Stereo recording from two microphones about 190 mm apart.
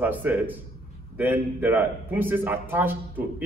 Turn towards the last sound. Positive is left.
turn(degrees=-10)  # may be behind; listen again after turning